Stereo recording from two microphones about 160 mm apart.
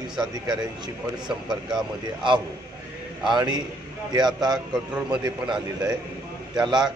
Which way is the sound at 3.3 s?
25° right (ahead or behind).